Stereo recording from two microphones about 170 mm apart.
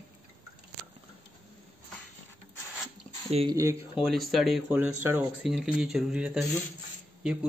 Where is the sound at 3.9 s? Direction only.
Centre (ahead or behind).